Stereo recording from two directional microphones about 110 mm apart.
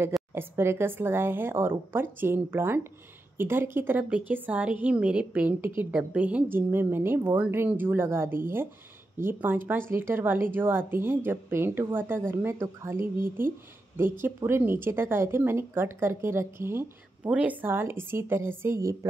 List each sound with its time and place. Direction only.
0.3 s a woman's voice: 20° right (ahead or behind)
5.9 s a woman's voice: 5° right (ahead or behind)
6.2 s speech: 15° right (ahead or behind)